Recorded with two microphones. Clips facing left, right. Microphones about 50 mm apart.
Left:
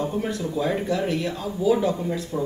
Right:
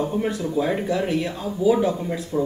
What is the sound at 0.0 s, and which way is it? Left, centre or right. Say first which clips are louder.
Speech: right 2 dB; centre.